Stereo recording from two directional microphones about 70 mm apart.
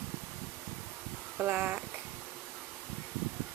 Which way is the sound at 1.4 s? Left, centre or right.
Right.